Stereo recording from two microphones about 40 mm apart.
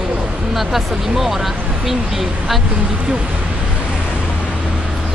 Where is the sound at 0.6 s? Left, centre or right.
Centre.